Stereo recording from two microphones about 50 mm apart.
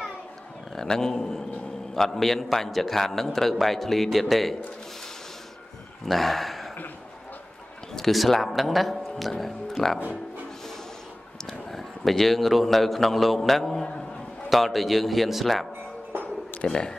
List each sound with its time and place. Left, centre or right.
0.7 s a man's voice: centre
6.0 s speech: centre
7.9 s a man's voice: centre
11.7 s a man's voice: centre
16.6 s speech: centre